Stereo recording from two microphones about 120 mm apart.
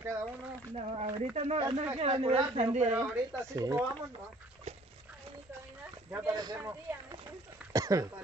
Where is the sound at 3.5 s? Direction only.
25° right (ahead or behind).